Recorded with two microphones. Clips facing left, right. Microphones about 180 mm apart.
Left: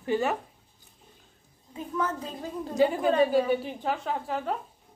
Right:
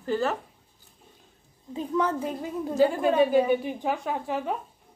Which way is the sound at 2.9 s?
5° right (ahead or behind).